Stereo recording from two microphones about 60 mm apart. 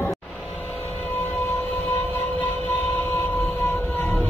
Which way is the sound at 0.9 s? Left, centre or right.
Left.